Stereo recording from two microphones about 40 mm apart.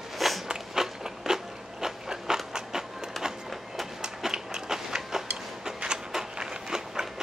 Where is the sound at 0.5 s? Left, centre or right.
Centre.